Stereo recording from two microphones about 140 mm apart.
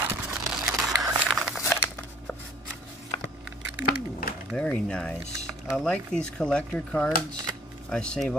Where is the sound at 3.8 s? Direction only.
90° left.